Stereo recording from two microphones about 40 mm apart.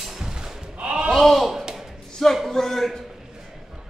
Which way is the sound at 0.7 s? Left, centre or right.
Right.